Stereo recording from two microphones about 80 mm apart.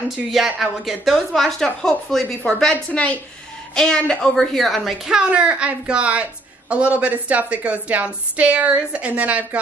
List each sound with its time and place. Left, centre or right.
0.1 s a woman's voice: centre
2.7 s a woman's voice: centre
5.3 s a woman's voice: centre